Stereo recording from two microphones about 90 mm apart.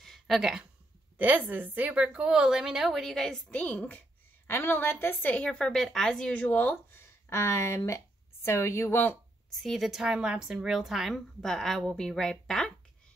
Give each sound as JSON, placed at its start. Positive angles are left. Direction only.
{"t": 0.0, "sound": "a sound", "side_deg": 0}
{"t": 1.1, "sound": "a woman's voice", "side_deg": -20}
{"t": 9.6, "sound": "a woman's voice", "side_deg": 0}